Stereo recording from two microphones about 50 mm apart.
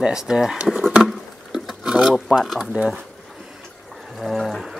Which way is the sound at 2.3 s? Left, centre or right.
Centre.